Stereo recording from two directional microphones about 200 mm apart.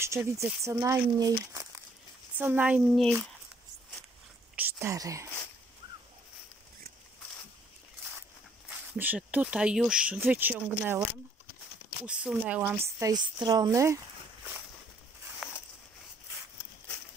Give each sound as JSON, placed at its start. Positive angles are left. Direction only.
{"t": 0.0, "sound": "speech", "side_deg": -15}
{"t": 2.3, "sound": "speech", "side_deg": -10}
{"t": 4.6, "sound": "speech", "side_deg": -10}
{"t": 8.6, "sound": "speech", "side_deg": -10}
{"t": 12.1, "sound": "speech", "side_deg": -5}
{"t": 15.4, "sound": "a sound", "side_deg": 0}